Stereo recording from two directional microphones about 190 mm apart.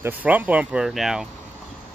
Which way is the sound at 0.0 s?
10° right (ahead or behind).